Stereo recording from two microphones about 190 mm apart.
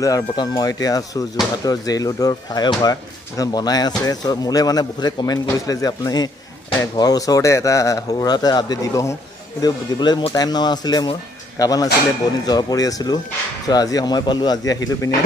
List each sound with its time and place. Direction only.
0.0 s speech: 20° left (ahead or behind)